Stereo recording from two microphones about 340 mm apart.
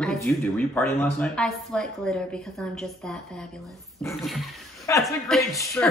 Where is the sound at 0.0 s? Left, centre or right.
Centre.